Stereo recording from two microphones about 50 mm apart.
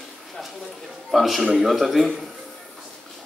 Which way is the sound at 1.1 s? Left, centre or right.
Centre.